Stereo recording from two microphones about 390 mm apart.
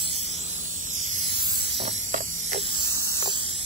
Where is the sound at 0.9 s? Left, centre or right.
Centre.